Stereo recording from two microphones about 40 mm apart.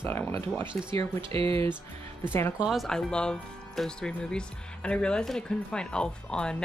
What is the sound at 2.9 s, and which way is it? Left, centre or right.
Speech, centre.